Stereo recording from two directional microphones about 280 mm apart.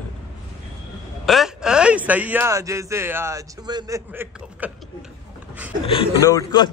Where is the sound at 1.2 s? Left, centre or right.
Centre.